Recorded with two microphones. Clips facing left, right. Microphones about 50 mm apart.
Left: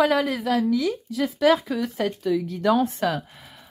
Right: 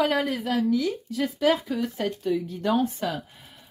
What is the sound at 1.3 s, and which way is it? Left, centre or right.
Speech, left.